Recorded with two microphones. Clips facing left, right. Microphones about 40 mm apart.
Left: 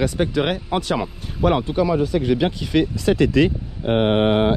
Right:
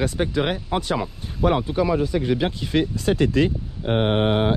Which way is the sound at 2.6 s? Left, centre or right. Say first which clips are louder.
Left 3 dB; left.